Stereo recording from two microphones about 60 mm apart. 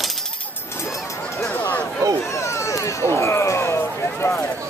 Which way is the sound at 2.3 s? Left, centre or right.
Left.